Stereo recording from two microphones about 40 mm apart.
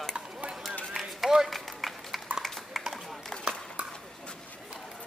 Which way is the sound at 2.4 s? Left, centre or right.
Centre.